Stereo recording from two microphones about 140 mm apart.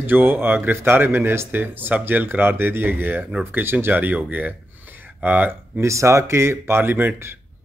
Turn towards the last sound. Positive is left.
turn(degrees=-15)  # may be behind; listen again after turning